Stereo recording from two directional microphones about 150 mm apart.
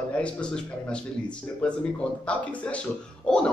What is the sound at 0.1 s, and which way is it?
A man's voice, 5° left (ahead or behind).